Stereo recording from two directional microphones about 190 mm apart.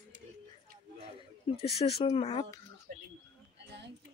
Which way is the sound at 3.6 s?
65° right (ahead or behind).